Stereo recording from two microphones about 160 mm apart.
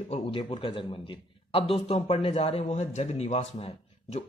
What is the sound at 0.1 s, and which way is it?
A man's voice, 35° left (ahead or behind).